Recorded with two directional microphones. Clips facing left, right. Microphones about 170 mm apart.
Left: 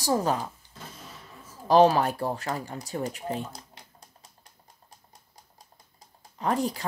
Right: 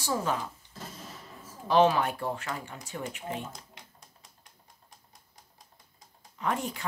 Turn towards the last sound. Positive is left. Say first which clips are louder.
# left 5 dB
turn(degrees=35)  # may be behind; listen again after turning